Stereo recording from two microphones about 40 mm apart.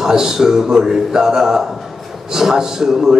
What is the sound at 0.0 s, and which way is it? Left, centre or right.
A man's voice, centre.